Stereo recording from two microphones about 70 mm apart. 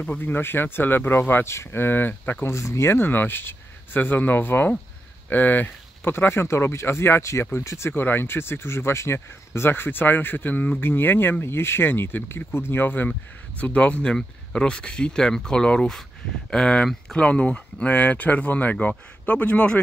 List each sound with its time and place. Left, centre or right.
0.2 s speech: left
2.4 s speech: left; by 19.8 s centre